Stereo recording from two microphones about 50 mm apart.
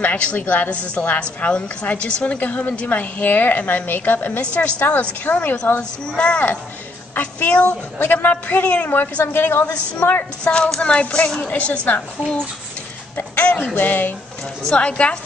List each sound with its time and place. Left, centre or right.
0.0 s a woman's voice: left
2.3 s a woman's voice: left
4.4 s a woman's voice: left
5.8 s a woman's voice: left
8.9 s a woman's voice: left
9.3 s a woman's voice: left
10.0 s a sound: left
10.4 s speech: centre
13.1 s music: left
13.7 s a woman's voice: left
14.8 s speech: left